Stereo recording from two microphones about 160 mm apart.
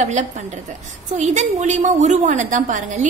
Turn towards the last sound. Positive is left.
turn(degrees=-50)  # may be behind; listen again after turning